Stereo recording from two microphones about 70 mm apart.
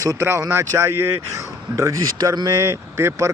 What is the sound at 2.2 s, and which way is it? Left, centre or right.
Speech, right.